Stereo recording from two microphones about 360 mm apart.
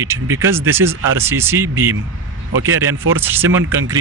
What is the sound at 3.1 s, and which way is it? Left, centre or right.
Speech, centre.